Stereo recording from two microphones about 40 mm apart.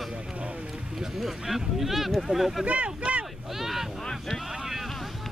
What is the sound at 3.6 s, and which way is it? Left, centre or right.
Speech, centre.